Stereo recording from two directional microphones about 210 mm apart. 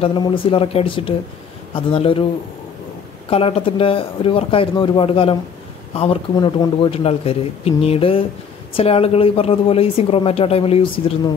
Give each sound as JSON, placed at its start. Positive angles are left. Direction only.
{"t": 0.0, "sound": "speech", "side_deg": 25}
{"t": 3.3, "sound": "speech", "side_deg": 25}